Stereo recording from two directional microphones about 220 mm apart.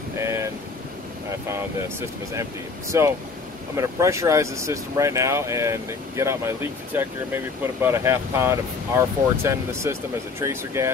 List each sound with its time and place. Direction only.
0.2 s speech: 15° right (ahead or behind)
1.5 s speech: 10° right (ahead or behind)